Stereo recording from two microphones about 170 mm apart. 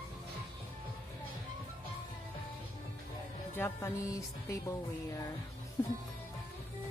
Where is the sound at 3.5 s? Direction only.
15° left (ahead or behind).